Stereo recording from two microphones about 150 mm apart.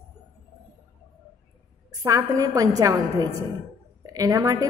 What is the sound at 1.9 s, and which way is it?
A woman's voice, 20° right (ahead or behind).